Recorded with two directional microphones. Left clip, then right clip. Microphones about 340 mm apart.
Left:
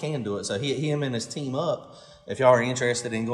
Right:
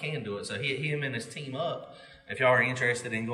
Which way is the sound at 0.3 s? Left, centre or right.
Centre.